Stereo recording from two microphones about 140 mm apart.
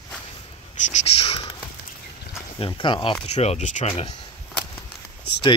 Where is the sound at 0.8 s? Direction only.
50° left (ahead or behind).